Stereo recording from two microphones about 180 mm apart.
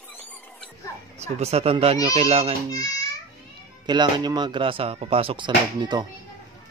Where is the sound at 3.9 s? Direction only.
25° right (ahead or behind).